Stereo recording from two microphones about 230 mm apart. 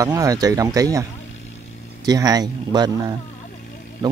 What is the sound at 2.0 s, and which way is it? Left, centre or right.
Speech, centre.